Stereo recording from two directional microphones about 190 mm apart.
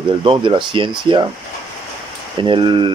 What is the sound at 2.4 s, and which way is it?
Speech, 25° right (ahead or behind).